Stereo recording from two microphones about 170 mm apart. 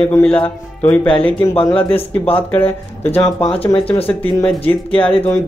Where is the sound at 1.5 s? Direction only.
35° left (ahead or behind).